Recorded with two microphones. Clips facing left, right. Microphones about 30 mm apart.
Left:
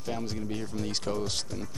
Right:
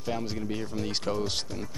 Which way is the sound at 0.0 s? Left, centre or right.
Centre.